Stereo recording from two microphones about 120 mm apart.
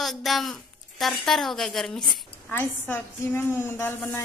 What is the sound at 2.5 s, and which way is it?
A woman's voice, 15° left (ahead or behind).